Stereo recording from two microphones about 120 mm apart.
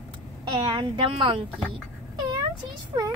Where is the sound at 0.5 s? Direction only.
40° right (ahead or behind).